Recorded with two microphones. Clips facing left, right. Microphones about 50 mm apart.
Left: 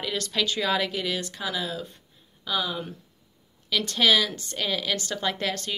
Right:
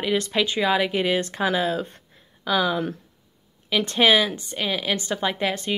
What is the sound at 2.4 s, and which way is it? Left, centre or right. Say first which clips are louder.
Speech: right 7 dB; right.